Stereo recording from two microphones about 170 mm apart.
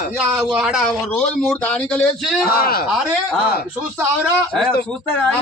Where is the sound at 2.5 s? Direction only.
60° left (ahead or behind).